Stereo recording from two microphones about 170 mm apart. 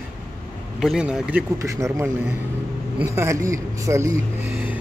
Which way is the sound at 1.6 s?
20° right (ahead or behind).